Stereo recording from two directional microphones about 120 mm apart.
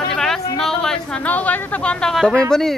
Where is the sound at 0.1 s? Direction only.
5° left (ahead or behind).